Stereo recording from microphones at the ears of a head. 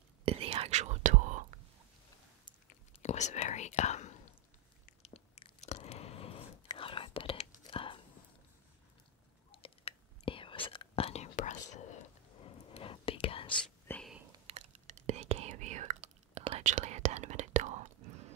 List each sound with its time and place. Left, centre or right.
0.2 s whispering: right
2.7 s whispering: left
4.8 s chewing: left
10.2 s whispering: left
14.2 s whispering: right